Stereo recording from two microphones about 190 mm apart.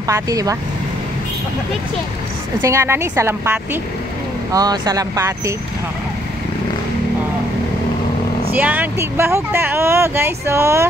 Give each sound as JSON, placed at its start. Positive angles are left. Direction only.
{"t": 0.0, "sound": "speech", "side_deg": -20}
{"t": 2.6, "sound": "speech", "side_deg": -15}
{"t": 8.5, "sound": "speech", "side_deg": -10}